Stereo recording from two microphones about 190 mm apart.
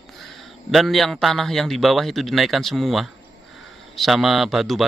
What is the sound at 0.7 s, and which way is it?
Speech, centre (ahead or behind).